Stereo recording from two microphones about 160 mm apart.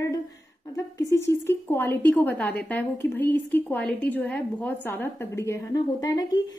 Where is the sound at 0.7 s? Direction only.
20° left (ahead or behind).